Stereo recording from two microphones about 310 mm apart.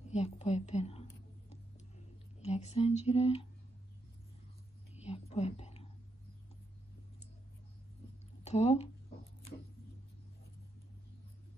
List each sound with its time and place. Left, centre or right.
0.1 s a sound: left
2.4 s speech: left
5.0 s whispering: left
8.5 s speech: left